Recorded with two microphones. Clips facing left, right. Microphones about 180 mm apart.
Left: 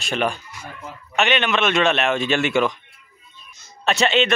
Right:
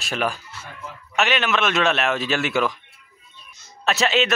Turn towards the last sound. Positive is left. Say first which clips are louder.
# left 2 dB
turn(degrees=-5)  # may be behind; listen again after turning